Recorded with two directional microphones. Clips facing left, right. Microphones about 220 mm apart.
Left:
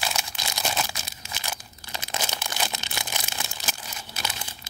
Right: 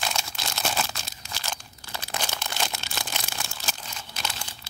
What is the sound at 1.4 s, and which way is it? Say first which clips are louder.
Crumpling: even; 15° left (ahead or behind).